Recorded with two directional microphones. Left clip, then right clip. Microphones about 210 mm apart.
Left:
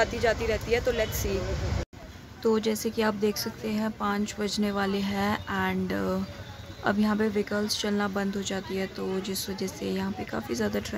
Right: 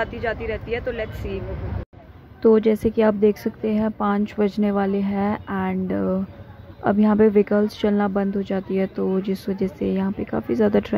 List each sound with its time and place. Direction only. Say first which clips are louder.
0.0 s speech: even; 10° left (ahead or behind)
2.4 s speech: right 10 dB; 25° right (ahead or behind)